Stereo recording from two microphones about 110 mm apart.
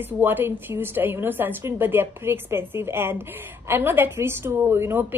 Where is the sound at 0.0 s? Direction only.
20° right (ahead or behind).